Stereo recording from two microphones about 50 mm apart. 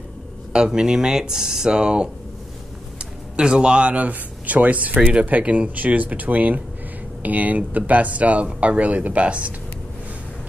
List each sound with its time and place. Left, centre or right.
0.5 s speech: centre
3.3 s speech: centre